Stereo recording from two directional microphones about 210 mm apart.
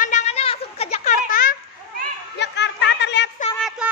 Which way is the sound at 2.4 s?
55° left (ahead or behind).